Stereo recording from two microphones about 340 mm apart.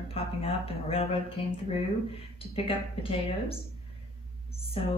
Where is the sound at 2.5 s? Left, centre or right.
Centre.